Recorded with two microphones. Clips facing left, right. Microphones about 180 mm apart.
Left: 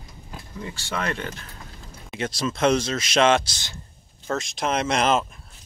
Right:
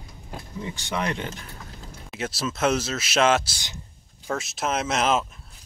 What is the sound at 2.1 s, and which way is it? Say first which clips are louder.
Speech: left 3 dB; 5° right (ahead or behind).